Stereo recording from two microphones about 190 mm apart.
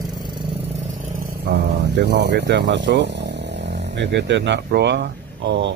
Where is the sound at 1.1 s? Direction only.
50° right (ahead or behind).